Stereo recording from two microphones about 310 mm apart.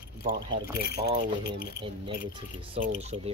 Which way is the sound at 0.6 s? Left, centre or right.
Left.